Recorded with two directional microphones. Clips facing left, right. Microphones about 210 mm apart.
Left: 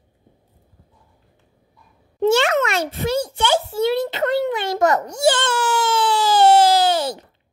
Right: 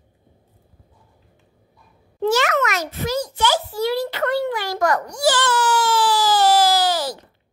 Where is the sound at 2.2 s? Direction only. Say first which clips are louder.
Left 3 dB; 25° left (ahead or behind).